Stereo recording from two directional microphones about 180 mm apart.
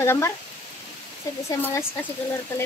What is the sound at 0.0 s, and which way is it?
Speech, 15° left (ahead or behind).